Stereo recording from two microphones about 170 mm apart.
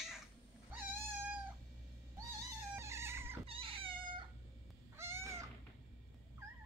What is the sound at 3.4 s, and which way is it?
Cat, 35° right (ahead or behind).